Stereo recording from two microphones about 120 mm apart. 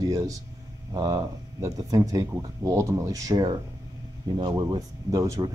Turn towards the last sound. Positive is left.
turn(degrees=-25)  # may be behind; listen again after turning